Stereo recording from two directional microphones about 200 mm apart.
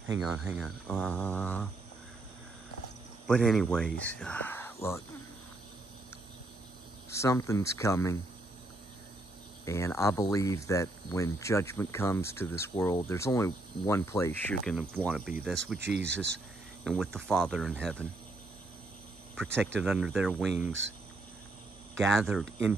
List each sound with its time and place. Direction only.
0.2 s speech: 5° right (ahead or behind)
3.3 s speech: centre (ahead or behind)
7.1 s speech: 15° left (ahead or behind)
9.7 s speech: 15° left (ahead or behind)
14.8 s speech: 5° right (ahead or behind)
15.8 s speech: 60° right (ahead or behind)
16.8 s speech: centre (ahead or behind)
19.3 s speech: centre (ahead or behind)
22.2 s speech: centre (ahead or behind)